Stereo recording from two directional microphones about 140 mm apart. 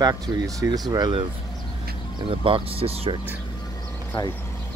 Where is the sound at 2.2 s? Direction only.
40° right (ahead or behind).